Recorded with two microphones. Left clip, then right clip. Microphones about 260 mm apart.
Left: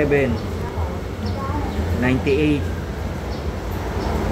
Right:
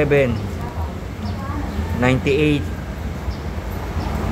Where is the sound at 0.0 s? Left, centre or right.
Right.